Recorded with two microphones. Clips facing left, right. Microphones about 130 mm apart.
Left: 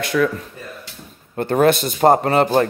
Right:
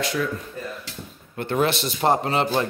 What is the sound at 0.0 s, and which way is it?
Speech, 65° left (ahead or behind).